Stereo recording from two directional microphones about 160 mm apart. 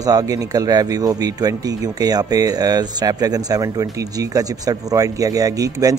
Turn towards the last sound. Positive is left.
turn(degrees=-20)  # may be behind; listen again after turning